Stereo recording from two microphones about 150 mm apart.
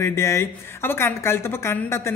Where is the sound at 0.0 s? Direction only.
20° left (ahead or behind).